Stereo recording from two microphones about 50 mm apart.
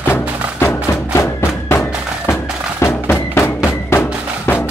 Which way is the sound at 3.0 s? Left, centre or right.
Left.